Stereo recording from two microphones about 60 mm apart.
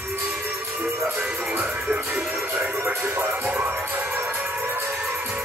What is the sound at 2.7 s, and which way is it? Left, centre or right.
Speech, right.